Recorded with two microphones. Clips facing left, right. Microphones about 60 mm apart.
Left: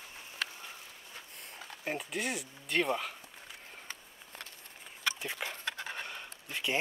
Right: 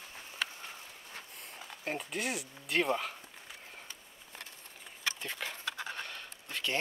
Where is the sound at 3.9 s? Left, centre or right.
Left.